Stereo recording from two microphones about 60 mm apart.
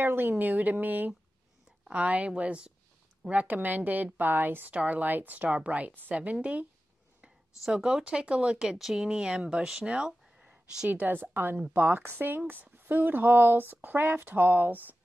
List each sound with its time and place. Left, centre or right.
0.0 s a woman's voice: right
7.6 s speech: centre
9.8 s a sound: centre
10.9 s a woman's voice: right